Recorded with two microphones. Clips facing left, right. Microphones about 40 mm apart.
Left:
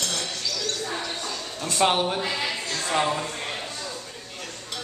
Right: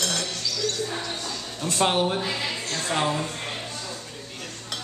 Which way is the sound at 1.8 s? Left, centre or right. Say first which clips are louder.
Left 2 dB; centre.